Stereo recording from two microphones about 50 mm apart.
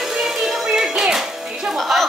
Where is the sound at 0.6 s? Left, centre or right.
Centre.